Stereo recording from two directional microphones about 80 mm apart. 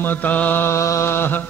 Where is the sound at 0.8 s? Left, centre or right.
Left.